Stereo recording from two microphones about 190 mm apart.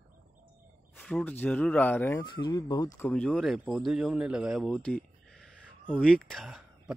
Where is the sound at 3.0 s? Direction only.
5° left (ahead or behind).